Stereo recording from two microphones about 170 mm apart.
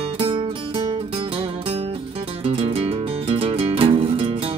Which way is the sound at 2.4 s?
35° right (ahead or behind).